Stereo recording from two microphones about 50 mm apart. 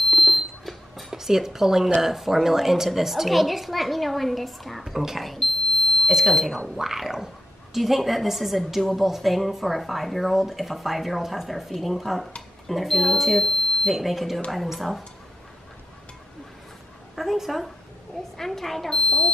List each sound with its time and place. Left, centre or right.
0.1 s alarm clock: centre
1.1 s a woman's voice: centre
17.1 s a woman's voice: centre
19.0 s speech: centre